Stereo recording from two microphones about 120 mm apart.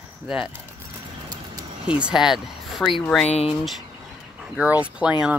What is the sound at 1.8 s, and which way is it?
Speech, 10° right (ahead or behind).